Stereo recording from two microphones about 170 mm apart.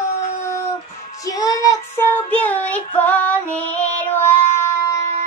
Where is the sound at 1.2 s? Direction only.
20° left (ahead or behind).